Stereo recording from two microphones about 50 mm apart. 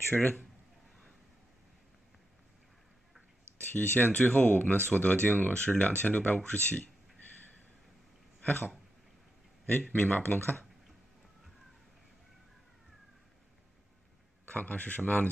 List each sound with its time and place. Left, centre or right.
0.1 s speech: left
3.7 s speech: left
8.4 s a sound: left
9.9 s speech: left
14.5 s speech: left